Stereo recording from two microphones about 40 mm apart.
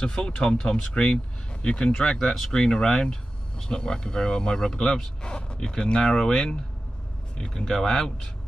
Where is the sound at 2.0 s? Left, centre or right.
Centre.